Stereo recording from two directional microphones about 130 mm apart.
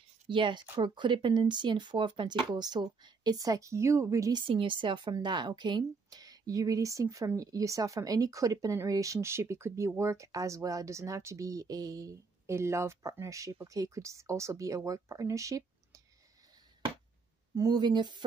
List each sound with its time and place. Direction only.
0.3 s speech: 40° right (ahead or behind)
17.6 s speech: 30° right (ahead or behind)